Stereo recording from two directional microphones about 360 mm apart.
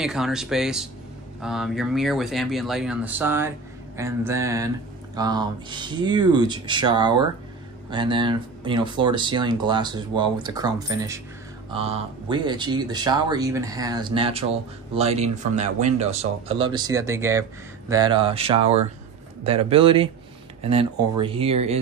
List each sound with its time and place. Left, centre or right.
0.0 s speech: centre